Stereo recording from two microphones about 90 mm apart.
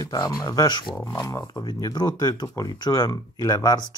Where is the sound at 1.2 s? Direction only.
40° left (ahead or behind).